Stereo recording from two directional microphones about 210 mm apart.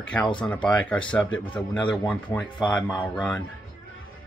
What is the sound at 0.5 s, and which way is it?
Speech, 5° left (ahead or behind).